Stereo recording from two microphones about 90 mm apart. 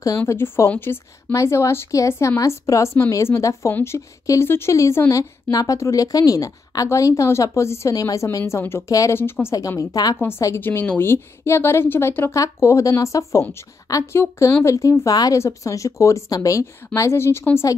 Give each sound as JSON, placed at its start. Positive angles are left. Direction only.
{"t": 0.3, "sound": "speech", "side_deg": 30}
{"t": 9.6, "sound": "speech", "side_deg": 40}
{"t": 10.6, "sound": "speech", "side_deg": 25}